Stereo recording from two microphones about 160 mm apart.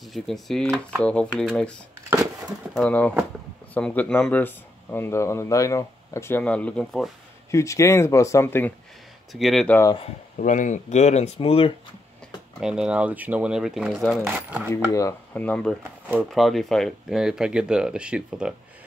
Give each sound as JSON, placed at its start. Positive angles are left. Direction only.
{"t": 0.1, "sound": "speech", "side_deg": 0}
{"t": 2.7, "sound": "speech", "side_deg": 10}
{"t": 7.5, "sound": "speech", "side_deg": 20}
{"t": 9.3, "sound": "speech", "side_deg": 0}
{"t": 10.3, "sound": "speech", "side_deg": 55}
{"t": 12.5, "sound": "speech", "side_deg": -5}
{"t": 14.7, "sound": "speech", "side_deg": 20}
{"t": 15.3, "sound": "speech", "side_deg": 10}